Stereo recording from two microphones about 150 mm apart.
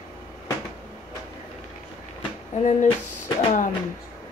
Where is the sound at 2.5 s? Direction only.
50° left (ahead or behind).